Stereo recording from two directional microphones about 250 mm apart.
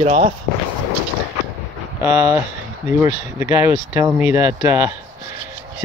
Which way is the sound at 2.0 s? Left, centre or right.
Centre.